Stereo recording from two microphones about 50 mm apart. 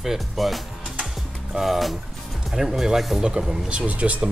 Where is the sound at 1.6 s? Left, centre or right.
Centre.